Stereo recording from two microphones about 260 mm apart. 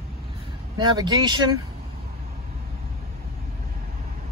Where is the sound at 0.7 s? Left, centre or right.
Centre.